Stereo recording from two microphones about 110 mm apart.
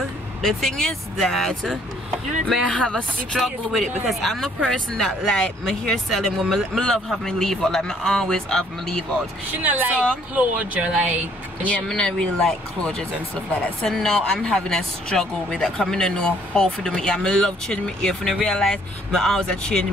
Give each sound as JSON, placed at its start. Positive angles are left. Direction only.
{"t": 0.4, "sound": "speech", "side_deg": 0}
{"t": 9.6, "sound": "speech", "side_deg": -15}
{"t": 11.6, "sound": "speech", "side_deg": 10}